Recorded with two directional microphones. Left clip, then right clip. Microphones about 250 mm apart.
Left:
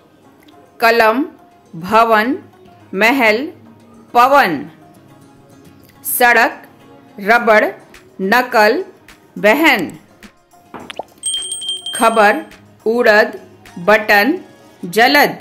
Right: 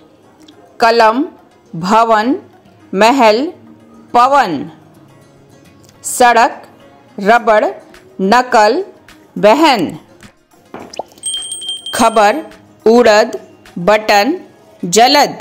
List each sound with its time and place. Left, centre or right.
0.7 s speech: centre
6.0 s a woman's voice: centre
10.9 s plop: centre
11.9 s speech: centre